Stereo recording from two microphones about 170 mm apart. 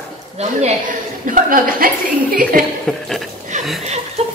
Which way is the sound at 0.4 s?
40° right (ahead or behind).